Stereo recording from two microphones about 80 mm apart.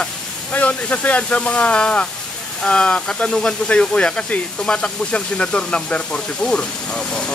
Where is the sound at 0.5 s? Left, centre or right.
Centre.